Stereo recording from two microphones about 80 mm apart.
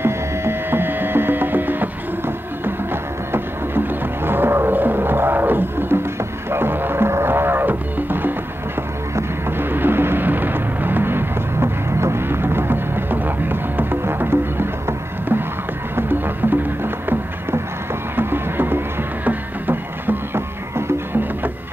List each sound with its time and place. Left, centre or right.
0.0 s music: right
6.5 s didgeridoo: right
9.1 s music: right